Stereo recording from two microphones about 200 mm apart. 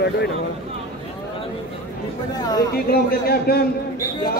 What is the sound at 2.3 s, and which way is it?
Speech, 20° left (ahead or behind).